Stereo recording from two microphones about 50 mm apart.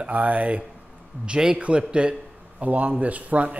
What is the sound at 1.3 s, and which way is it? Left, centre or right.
Speech, centre.